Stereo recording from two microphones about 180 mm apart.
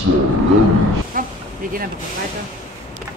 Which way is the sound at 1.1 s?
50° right (ahead or behind).